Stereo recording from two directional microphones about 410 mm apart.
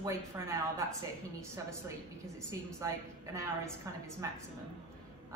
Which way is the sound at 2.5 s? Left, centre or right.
Centre.